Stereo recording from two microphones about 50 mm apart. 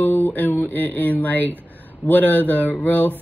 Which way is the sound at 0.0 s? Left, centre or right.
Left.